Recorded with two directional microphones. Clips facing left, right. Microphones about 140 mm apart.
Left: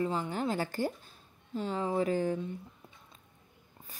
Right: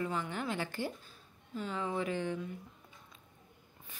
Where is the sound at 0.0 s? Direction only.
30° left (ahead or behind).